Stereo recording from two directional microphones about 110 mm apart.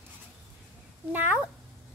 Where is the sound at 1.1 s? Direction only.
20° right (ahead or behind).